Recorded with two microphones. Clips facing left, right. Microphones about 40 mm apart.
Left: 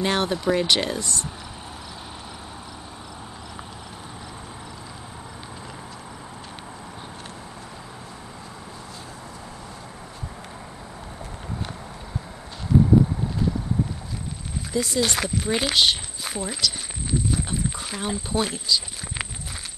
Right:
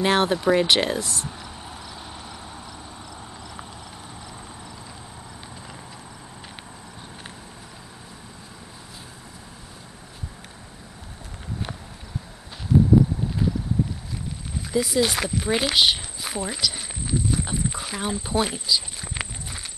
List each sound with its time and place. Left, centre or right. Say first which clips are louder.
0.0 s speech: right 3 dB; centre
14.7 s speech: right 2 dB; centre